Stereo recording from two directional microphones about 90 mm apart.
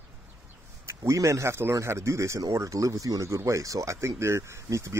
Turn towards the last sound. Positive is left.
turn(degrees=-35)  # may be behind; listen again after turning